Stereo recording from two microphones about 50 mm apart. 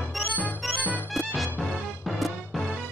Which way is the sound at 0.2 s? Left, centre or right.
Centre.